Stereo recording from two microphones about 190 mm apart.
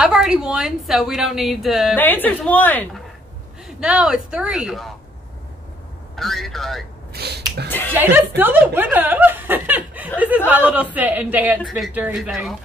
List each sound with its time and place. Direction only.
0.0 s a woman's voice: 5° right (ahead or behind)
2.0 s a woman's voice: 10° left (ahead or behind)
3.6 s a woman's voice: 5° right (ahead or behind)
6.1 s a woman's voice: centre (ahead or behind)
7.1 s a sound: 55° right (ahead or behind)
7.9 s speech: 10° right (ahead or behind)